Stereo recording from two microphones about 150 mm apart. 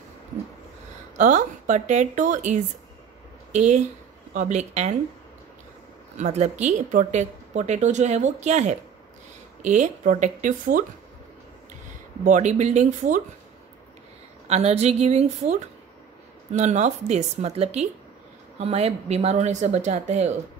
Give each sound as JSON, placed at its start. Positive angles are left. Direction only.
{"t": 1.1, "sound": "a woman's voice", "side_deg": -55}
{"t": 6.1, "sound": "a woman's voice", "side_deg": -50}
{"t": 12.3, "sound": "speech", "side_deg": -55}
{"t": 14.5, "sound": "speech", "side_deg": -45}
{"t": 16.5, "sound": "speech", "side_deg": -50}